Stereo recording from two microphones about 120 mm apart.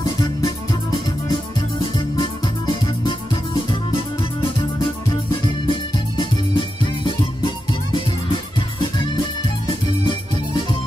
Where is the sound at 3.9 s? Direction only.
45° left (ahead or behind).